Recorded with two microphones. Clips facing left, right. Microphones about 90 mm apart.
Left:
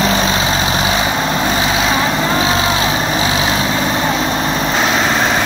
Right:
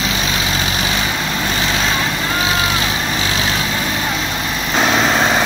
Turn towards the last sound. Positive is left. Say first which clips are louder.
# even
turn(degrees=0)  # may be behind; listen again after turning